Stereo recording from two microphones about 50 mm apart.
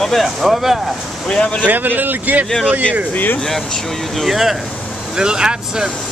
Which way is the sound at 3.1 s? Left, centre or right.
Left.